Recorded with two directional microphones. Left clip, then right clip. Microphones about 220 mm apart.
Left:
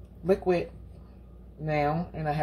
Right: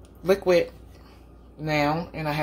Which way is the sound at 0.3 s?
30° right (ahead or behind).